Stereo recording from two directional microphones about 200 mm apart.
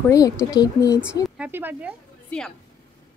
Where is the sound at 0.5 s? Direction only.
20° left (ahead or behind).